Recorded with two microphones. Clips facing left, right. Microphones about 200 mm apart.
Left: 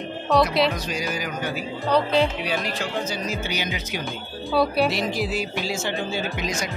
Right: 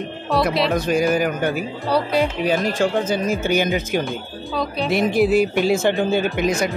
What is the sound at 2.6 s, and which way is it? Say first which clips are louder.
Speech: right 8 dB; 50° right (ahead or behind).